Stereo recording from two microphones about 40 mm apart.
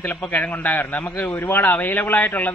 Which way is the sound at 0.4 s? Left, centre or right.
Left.